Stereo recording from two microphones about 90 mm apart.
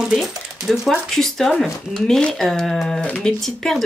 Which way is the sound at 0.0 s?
Centre (ahead or behind).